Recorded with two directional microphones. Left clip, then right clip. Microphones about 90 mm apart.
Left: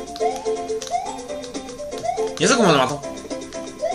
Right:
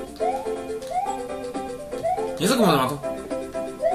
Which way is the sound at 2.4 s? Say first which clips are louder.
Left 4 dB; 85° left.